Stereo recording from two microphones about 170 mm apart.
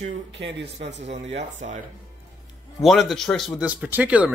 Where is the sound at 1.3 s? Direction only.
45° right (ahead or behind).